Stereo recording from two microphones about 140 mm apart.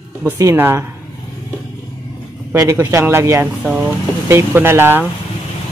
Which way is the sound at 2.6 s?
20° right (ahead or behind).